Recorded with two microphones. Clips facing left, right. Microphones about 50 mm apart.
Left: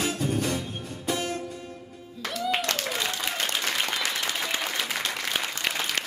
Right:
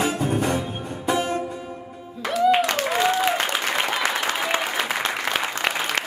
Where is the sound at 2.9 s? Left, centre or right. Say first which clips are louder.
Right 9 dB; right.